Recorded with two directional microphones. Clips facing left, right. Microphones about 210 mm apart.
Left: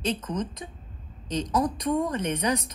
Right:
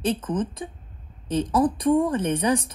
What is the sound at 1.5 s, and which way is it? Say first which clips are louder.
A woman's voice: right 5 dB; 30° right (ahead or behind).